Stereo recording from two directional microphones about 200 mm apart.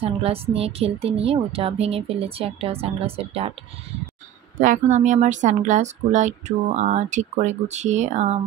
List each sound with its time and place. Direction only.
0.0 s a woman's voice: 30° right (ahead or behind)
4.6 s speech: 40° right (ahead or behind)